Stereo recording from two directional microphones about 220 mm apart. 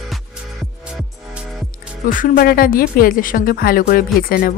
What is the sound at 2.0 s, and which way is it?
Speech, 40° left (ahead or behind).